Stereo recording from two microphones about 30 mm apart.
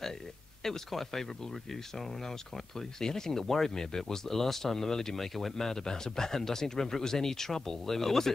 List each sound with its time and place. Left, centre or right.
0.7 s speech: centre
5.7 s speech: centre